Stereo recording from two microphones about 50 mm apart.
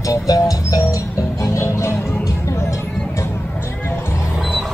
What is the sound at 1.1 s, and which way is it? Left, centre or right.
Music, left.